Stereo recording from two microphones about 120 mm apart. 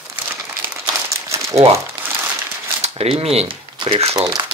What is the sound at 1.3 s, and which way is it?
Crumpling, 25° right (ahead or behind).